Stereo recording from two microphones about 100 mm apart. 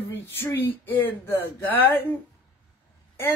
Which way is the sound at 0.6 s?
20° left (ahead or behind).